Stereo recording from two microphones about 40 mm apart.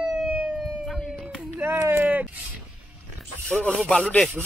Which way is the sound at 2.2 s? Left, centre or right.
Right.